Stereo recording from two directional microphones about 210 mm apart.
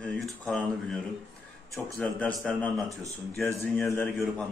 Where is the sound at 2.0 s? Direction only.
5° left (ahead or behind).